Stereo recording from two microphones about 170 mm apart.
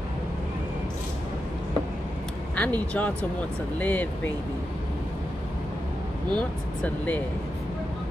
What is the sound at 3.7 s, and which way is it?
Speech, 10° left (ahead or behind).